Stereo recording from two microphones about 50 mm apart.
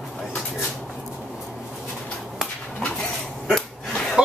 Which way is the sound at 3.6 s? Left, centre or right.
Centre.